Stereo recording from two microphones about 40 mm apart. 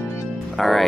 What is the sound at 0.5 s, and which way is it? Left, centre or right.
Speech, centre.